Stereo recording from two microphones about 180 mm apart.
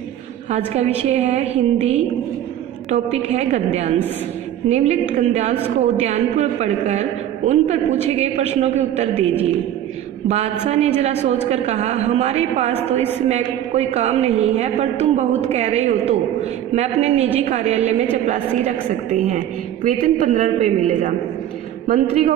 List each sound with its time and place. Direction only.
0.7 s a man's voice: 35° right (ahead or behind)
13.7 s a man's voice: 35° right (ahead or behind)